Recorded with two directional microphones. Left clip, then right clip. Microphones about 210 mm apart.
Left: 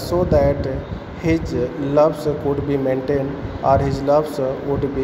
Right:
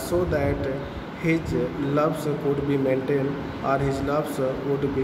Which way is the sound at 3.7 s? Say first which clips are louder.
Left 8 dB; 15° left (ahead or behind).